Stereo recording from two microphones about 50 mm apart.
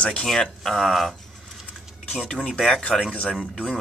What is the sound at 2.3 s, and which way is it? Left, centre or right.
Speech, centre.